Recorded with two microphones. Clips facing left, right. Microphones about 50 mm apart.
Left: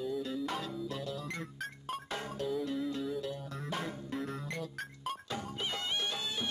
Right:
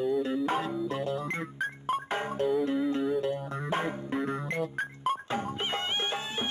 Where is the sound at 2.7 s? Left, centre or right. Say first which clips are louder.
Right 8 dB; right.